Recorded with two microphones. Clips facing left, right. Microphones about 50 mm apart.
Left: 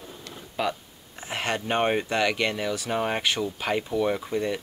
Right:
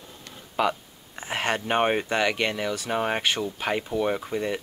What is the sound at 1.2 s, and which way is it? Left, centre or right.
Speech, centre.